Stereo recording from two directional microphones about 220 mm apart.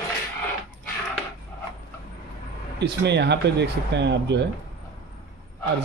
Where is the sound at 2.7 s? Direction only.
50° right (ahead or behind).